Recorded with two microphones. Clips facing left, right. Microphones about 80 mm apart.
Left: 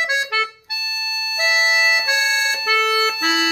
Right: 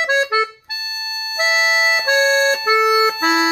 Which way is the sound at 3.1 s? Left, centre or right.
Right.